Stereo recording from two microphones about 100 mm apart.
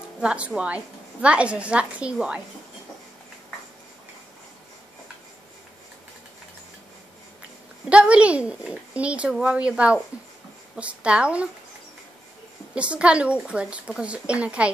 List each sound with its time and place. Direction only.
0.2 s a woman's voice: 10° right (ahead or behind)
7.9 s a woman's voice: 10° right (ahead or behind)
12.7 s a woman's voice: 10° right (ahead or behind)